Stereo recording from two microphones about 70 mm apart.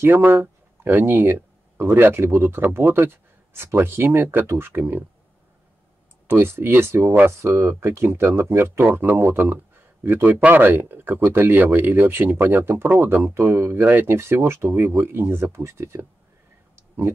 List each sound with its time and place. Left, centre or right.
0.0 s speech: right
6.2 s speech: right